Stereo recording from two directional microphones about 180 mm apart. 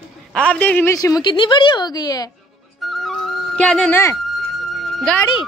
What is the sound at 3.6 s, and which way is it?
A woman's voice, 5° left (ahead or behind).